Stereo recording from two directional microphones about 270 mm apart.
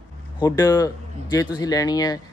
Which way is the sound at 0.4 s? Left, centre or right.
Centre.